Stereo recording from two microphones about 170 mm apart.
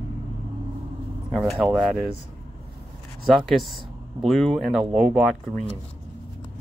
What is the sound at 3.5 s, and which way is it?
Speech, centre (ahead or behind).